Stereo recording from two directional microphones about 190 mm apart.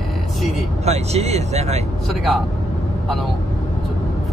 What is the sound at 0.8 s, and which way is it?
Speech, 35° right (ahead or behind).